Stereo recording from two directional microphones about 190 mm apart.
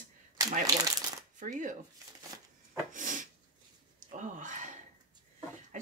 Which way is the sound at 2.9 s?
45° right (ahead or behind).